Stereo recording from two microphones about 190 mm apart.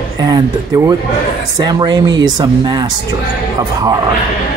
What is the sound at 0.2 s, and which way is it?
Speech, 20° right (ahead or behind).